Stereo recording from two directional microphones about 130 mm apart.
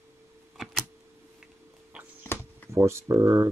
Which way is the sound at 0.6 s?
Centre (ahead or behind).